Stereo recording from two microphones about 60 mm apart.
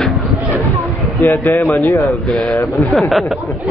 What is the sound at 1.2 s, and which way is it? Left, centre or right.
Speech, left.